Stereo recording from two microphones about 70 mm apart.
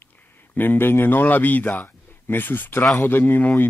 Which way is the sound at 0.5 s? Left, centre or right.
Left.